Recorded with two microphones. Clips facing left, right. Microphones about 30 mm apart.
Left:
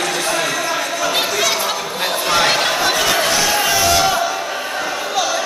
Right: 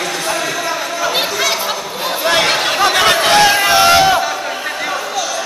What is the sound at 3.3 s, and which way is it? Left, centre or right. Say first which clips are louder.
Music: right 6 dB; right.